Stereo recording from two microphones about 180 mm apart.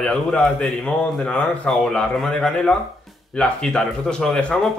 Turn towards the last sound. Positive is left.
turn(degrees=5)  # may be behind; listen again after turning